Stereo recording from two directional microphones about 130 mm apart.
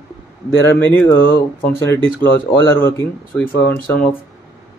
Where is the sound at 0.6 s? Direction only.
20° left (ahead or behind).